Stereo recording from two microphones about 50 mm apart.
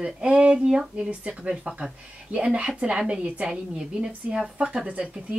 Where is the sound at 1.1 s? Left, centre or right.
Right.